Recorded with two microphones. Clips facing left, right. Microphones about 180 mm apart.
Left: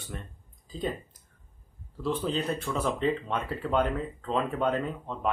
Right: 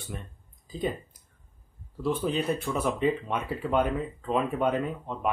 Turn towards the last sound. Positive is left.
turn(degrees=-10)  # may be behind; listen again after turning